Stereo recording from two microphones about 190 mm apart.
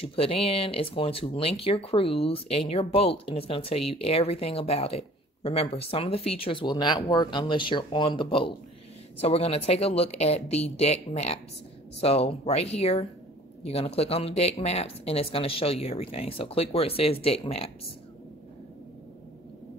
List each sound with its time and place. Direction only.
0.0 s speech: 30° left (ahead or behind)